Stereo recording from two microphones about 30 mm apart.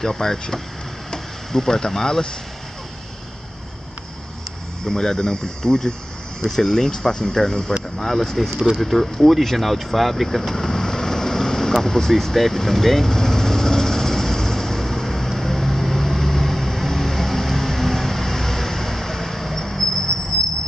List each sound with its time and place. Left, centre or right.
0.0 s speech: centre
4.8 s speech: left
8.0 s speech: centre
10.5 s vehicle: centre